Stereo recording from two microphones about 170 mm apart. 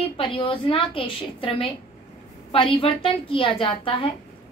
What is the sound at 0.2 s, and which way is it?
A woman's voice, 30° left (ahead or behind).